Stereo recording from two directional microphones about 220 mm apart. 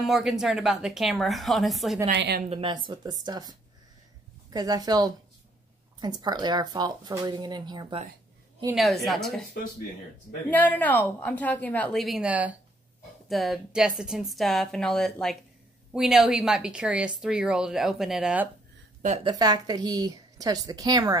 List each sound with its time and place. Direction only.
0.0 s a woman's voice: centre (ahead or behind)
2.1 s a woman's voice: 50° right (ahead or behind)
2.5 s a woman's voice: 20° right (ahead or behind)
8.7 s a woman's voice: centre (ahead or behind)
10.5 s a woman's voice: 5° left (ahead or behind)
19.2 s a woman's voice: 15° right (ahead or behind)